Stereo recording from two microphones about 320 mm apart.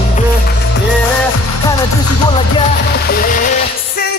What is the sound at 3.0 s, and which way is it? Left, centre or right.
Music, left.